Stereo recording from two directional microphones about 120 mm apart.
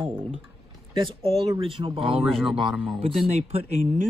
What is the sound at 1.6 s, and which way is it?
Speech, 45° right (ahead or behind).